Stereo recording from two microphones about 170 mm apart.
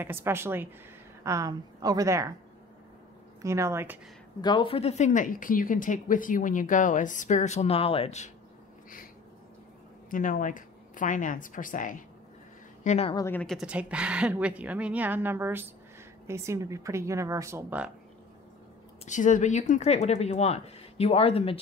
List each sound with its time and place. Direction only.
0.0 s a woman's voice: 15° right (ahead or behind)
3.4 s a woman's voice: 15° right (ahead or behind)
4.4 s speech: 25° left (ahead or behind)
10.0 s speech: 50° left (ahead or behind)
12.8 s a woman's voice: 40° left (ahead or behind)
13.1 s speech: 15° left (ahead or behind)
13.6 s a woman's voice: 5° right (ahead or behind)
19.0 s speech: 45° left (ahead or behind)